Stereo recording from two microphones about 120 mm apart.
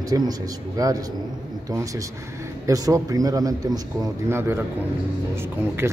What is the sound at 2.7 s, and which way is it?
A man's voice, 30° right (ahead or behind).